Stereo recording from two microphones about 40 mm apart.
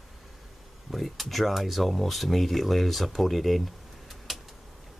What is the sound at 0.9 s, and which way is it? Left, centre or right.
Speech, centre.